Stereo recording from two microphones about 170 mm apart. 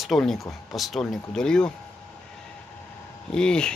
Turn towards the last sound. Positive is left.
turn(degrees=5)  # may be behind; listen again after turning